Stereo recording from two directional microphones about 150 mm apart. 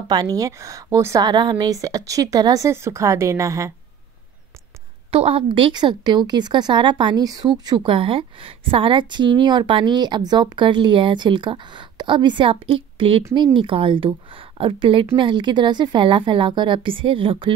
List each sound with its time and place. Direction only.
0.1 s speech: 25° right (ahead or behind)
5.1 s a woman's voice: 40° right (ahead or behind)